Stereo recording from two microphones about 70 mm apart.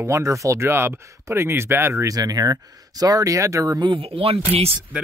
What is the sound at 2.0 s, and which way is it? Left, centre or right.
Speech, right.